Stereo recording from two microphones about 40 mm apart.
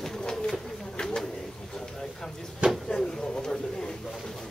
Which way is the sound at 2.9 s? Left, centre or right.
Centre.